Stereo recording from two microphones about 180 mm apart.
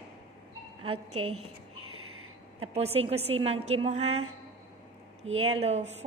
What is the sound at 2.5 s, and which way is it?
A woman's voice, 35° right (ahead or behind).